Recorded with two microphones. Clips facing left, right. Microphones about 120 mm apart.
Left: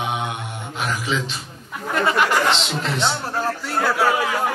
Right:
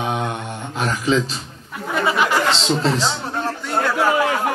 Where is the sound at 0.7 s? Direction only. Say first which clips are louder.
Right 5 dB; 35° right (ahead or behind).